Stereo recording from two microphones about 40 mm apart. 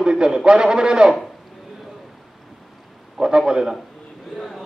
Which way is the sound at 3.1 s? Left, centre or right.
Centre.